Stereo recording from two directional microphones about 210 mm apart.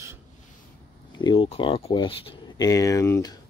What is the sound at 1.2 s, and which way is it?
Speech, 20° left (ahead or behind).